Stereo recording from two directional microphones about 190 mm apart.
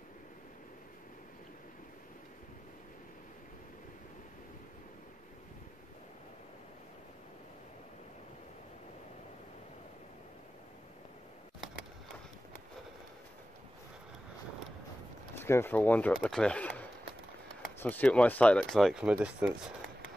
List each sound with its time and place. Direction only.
15.3 s speech: 10° left (ahead or behind); by 19.5 s 5° right (ahead or behind)